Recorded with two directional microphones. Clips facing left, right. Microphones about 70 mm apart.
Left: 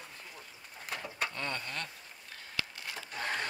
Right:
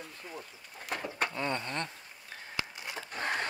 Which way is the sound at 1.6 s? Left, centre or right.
Right.